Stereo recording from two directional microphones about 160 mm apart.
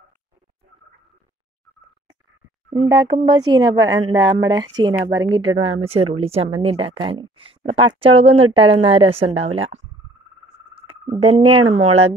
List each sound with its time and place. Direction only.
2.7 s speech: 30° right (ahead or behind)